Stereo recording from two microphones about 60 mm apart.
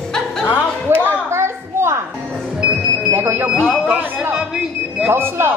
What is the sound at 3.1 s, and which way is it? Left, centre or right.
Speech, right.